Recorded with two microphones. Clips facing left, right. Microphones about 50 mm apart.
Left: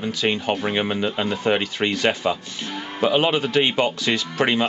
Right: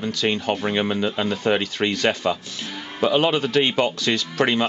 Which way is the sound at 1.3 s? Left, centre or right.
Centre.